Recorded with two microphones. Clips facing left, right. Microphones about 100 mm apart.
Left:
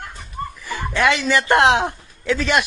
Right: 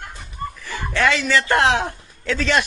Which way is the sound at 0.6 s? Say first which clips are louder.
Left 1 dB; 15° left (ahead or behind).